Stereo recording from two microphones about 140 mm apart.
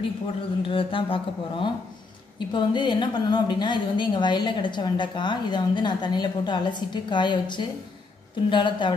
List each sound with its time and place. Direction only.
0.6 s a woman's voice: 40° left (ahead or behind)